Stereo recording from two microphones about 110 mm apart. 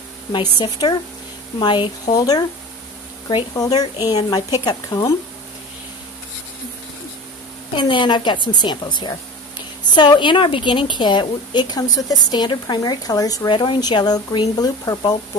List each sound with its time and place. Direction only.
0.3 s a woman's voice: 40° left (ahead or behind)
3.5 s speech: 35° left (ahead or behind)
7.7 s a woman's voice: 45° left (ahead or behind)